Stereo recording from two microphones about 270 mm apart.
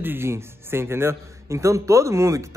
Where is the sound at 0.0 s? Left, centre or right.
Centre.